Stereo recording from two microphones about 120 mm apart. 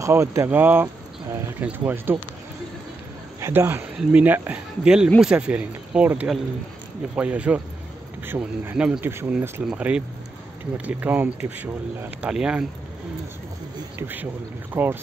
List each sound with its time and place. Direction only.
0.0 s speech: 25° right (ahead or behind)
3.3 s speech: 20° right (ahead or behind)
13.9 s speech: 15° right (ahead or behind)